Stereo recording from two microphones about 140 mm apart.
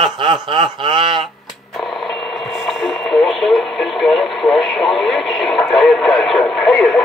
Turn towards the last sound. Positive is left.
turn(degrees=0)  # may be behind; listen again after turning